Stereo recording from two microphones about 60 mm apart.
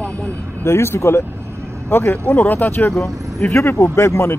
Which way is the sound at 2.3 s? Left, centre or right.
Left.